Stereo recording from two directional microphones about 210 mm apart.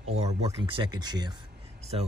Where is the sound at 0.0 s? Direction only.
30° right (ahead or behind).